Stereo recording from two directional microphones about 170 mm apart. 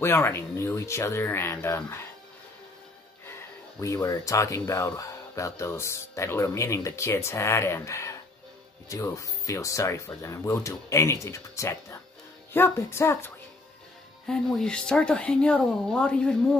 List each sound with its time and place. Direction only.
0.0 s speech: 15° left (ahead or behind)
3.3 s speech: 20° left (ahead or behind)
14.2 s speech: 5° left (ahead or behind)